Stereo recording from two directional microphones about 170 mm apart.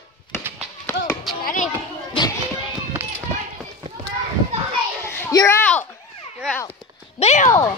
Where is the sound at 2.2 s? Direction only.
30° left (ahead or behind).